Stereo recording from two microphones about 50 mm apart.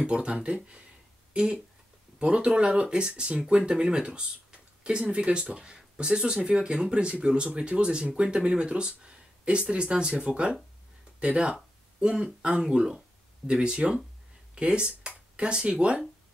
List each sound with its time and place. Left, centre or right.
0.0 s speech: right
12.6 s speech: centre